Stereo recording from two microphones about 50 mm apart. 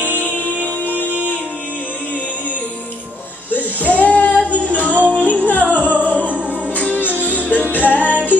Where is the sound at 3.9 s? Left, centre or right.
Left.